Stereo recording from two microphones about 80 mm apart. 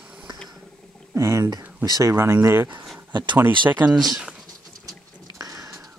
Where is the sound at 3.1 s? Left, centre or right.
Right.